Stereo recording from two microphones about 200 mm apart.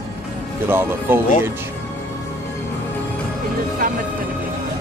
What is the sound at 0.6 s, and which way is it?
Speech, 10° right (ahead or behind).